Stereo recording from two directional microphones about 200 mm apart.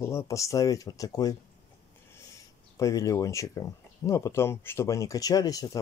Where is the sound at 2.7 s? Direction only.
15° left (ahead or behind).